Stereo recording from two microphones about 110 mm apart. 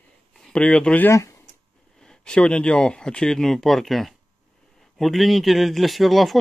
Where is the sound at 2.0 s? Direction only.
5° left (ahead or behind).